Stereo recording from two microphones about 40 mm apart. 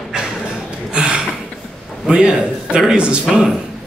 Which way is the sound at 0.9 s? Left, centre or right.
Right.